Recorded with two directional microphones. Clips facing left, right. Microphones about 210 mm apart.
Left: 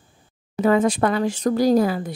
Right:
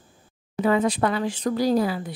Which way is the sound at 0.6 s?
45° left (ahead or behind).